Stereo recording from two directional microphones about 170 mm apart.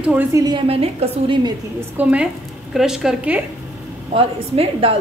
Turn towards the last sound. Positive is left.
turn(degrees=-35)  # may be behind; listen again after turning